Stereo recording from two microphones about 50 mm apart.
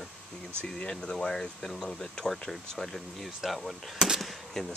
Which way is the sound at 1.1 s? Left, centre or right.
Centre.